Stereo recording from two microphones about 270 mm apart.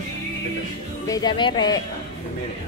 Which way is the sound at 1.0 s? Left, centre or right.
Centre.